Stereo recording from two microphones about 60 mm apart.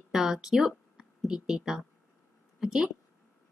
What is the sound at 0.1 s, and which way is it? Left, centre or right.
A woman's voice, centre.